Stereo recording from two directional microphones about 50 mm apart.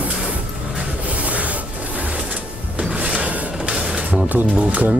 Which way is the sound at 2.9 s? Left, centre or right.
Right.